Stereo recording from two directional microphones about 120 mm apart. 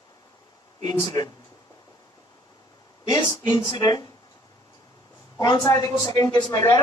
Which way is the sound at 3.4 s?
40° left (ahead or behind).